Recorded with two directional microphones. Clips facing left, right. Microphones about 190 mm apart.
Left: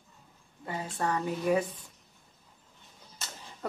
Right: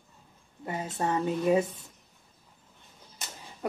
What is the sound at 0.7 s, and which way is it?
A woman's voice, 20° right (ahead or behind).